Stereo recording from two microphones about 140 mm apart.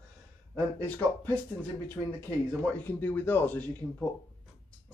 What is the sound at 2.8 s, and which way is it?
Speech, 15° left (ahead or behind).